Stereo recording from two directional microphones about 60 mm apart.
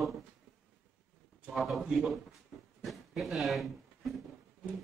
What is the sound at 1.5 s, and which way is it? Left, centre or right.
Speech, centre.